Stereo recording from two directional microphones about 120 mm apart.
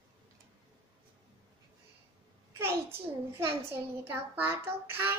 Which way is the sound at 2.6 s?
20° right (ahead or behind).